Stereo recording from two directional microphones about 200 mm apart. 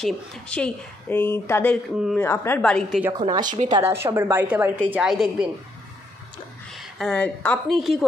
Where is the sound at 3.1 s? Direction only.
20° right (ahead or behind); by 5.4 s 5° right (ahead or behind).